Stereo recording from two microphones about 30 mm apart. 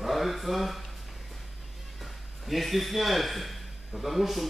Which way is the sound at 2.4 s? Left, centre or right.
Centre.